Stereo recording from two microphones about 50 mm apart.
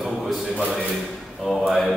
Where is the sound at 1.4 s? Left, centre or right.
Centre.